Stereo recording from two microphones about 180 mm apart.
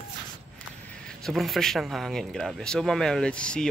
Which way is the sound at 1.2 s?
Centre (ahead or behind).